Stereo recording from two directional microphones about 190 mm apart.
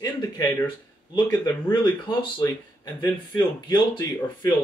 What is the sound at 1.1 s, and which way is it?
Speech, 20° left (ahead or behind).